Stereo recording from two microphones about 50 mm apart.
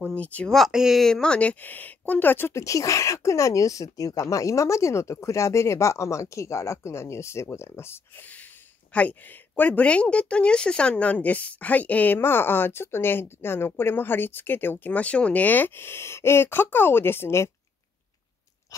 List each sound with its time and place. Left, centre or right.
0.1 s speech: left
0.7 s speech: centre
0.9 s speech: centre
1.2 s speech: left
1.6 s speech: left
2.5 s speech: left
7.5 s speech: left
8.2 s a sound: left
8.9 s speech: left
12.2 s speech: left
14.9 s speech: left
18.7 s chewing: left